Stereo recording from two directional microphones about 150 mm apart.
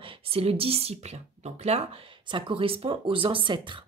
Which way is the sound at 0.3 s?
40° right (ahead or behind).